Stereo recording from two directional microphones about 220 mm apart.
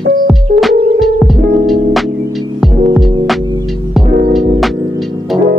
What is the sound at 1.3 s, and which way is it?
Music, 45° right (ahead or behind).